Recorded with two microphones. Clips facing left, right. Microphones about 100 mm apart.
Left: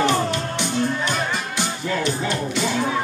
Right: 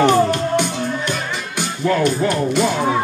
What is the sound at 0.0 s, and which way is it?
Music, 50° right (ahead or behind).